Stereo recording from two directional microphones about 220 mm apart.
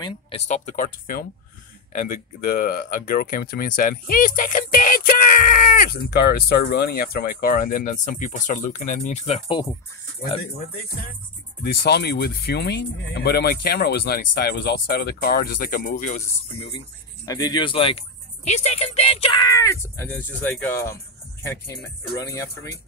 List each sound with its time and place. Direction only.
0.0 s speech: 25° left (ahead or behind)
0.7 s speech: 40° left (ahead or behind); by 9.7 s 25° left (ahead or behind)
11.6 s speech: 45° left (ahead or behind)
17.3 s speech: 20° left (ahead or behind)